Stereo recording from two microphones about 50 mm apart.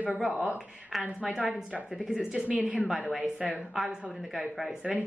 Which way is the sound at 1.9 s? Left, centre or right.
Centre.